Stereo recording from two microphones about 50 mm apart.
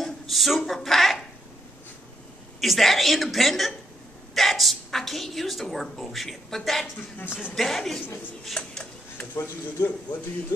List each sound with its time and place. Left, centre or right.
0.0 s speech: centre
2.6 s a woman's voice: centre
8.6 s speech: left
9.3 s speech: left